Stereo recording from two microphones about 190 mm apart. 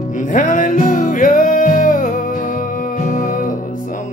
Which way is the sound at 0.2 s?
45° left (ahead or behind).